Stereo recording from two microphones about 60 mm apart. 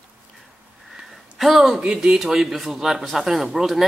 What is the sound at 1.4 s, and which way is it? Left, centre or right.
Speech, centre.